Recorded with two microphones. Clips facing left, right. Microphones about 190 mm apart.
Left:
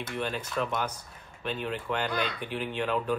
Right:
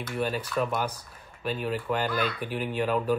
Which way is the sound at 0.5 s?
25° left (ahead or behind).